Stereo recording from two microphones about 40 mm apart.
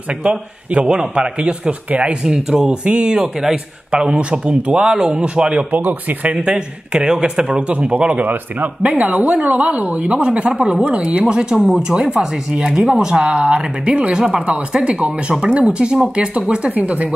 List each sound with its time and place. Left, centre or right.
0.2 s a man's voice: right
2.2 s a man's voice: centre
5.8 s a man's voice: right
6.3 s a man's voice: right
8.8 s speech: right
10.2 s a man's voice: right
13.6 s speech: right
14.2 s a man's voice: right